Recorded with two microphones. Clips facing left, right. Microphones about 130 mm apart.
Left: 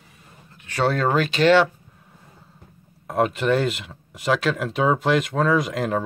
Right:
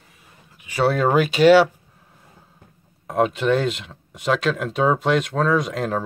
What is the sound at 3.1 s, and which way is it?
Speech, centre (ahead or behind).